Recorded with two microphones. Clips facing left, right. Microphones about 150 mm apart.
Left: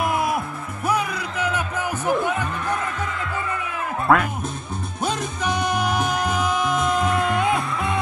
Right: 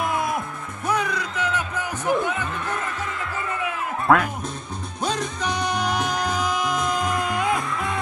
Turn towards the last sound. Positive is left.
turn(degrees=25)  # may be behind; listen again after turning